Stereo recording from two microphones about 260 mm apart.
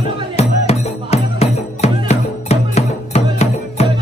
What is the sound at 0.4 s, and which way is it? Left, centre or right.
Music, left.